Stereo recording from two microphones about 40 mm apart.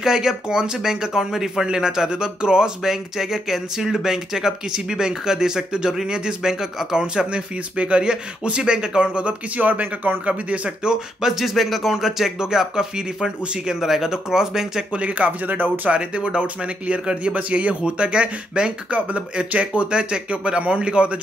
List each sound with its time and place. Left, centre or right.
0.0 s a man's voice: centre
9.6 s speech: right
10.8 s a man's voice: centre
13.7 s a man's voice: centre
14.9 s speech: right
15.9 s speech: right